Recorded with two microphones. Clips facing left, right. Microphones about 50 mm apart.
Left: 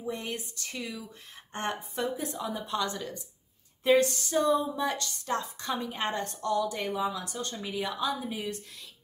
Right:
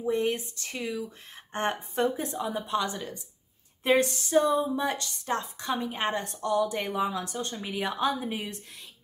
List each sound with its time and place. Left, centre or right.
0.0 s a woman's voice: right; by 3.2 s centre
3.8 s a woman's voice: right